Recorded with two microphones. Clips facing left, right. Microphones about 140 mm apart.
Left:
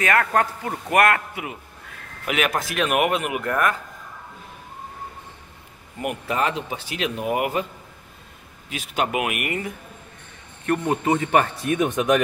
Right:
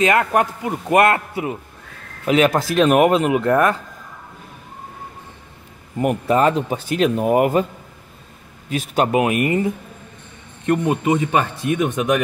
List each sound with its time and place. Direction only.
0.0 s a man's voice: 20° right (ahead or behind)
5.9 s speech: 40° right (ahead or behind)
8.6 s speech: 45° right (ahead or behind); by 12.0 s 15° right (ahead or behind)